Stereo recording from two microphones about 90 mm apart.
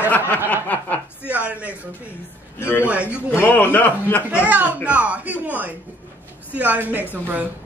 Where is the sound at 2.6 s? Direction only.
25° left (ahead or behind).